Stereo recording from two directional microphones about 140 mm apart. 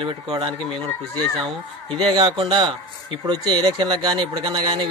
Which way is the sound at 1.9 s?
35° right (ahead or behind).